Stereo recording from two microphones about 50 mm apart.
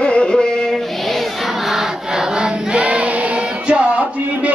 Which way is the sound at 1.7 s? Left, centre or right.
Centre.